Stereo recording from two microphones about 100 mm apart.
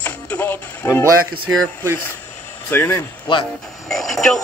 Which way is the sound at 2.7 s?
20° left (ahead or behind).